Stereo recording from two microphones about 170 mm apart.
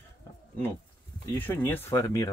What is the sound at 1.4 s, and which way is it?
Speech, 10° left (ahead or behind).